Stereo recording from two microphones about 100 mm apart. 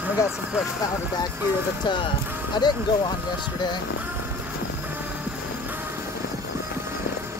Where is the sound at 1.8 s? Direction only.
50° left (ahead or behind).